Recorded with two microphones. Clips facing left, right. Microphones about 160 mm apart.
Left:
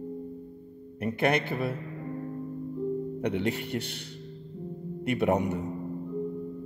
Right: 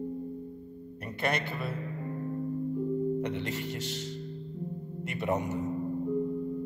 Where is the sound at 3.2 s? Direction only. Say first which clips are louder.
Left 4 dB; 60° left (ahead or behind).